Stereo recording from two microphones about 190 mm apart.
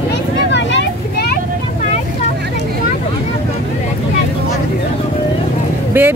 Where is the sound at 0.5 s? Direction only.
65° left (ahead or behind).